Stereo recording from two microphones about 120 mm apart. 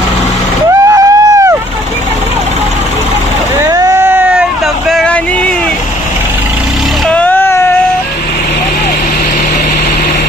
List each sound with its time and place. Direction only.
0.7 s vehicle: 25° right (ahead or behind)
3.6 s vehicle: 25° right (ahead or behind); by 5.2 s 5° left (ahead or behind)
7.1 s vehicle: 10° left (ahead or behind)